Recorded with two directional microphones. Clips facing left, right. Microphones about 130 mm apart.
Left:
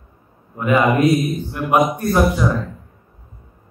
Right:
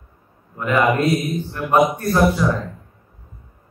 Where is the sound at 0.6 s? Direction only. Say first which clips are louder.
Left 2 dB; 15° left (ahead or behind).